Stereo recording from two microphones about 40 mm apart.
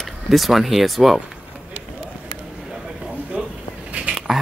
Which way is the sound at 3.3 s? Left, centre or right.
Right.